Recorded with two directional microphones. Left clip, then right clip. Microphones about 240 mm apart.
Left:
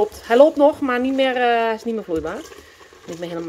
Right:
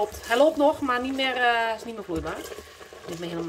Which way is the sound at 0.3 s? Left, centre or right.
Centre.